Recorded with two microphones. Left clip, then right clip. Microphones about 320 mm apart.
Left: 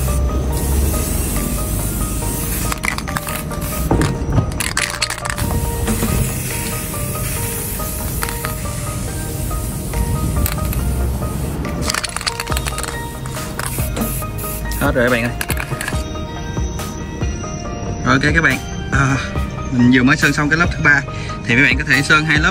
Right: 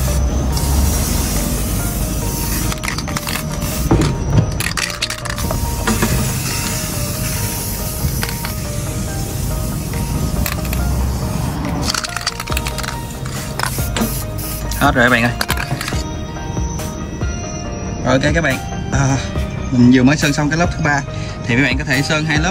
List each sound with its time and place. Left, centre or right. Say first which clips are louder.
14.8 s speech: right 3 dB; centre
18.0 s speech: left 1 dB; centre